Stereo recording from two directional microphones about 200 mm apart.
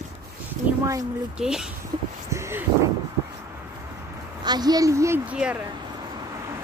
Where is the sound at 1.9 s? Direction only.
30° right (ahead or behind).